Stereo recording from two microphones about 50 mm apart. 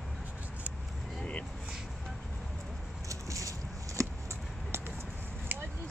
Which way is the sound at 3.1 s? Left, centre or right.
Right.